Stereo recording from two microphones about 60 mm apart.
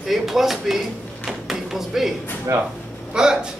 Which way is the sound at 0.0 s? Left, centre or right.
Centre.